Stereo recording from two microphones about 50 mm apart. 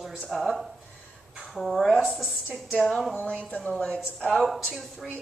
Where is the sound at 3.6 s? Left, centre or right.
Centre.